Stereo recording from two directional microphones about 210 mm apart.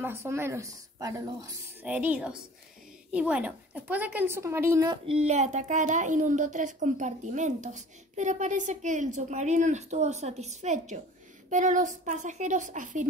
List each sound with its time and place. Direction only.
0.0 s speech: 10° right (ahead or behind)
5.0 s a woman's voice: 30° right (ahead or behind)